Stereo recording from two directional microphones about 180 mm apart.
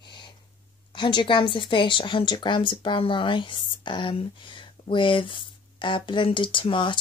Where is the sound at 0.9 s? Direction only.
25° left (ahead or behind).